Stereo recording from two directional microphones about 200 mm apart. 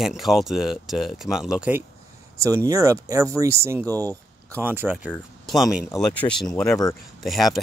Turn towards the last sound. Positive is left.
turn(degrees=0)  # may be behind; listen again after turning